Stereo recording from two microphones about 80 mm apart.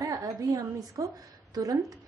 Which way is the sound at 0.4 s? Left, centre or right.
Right.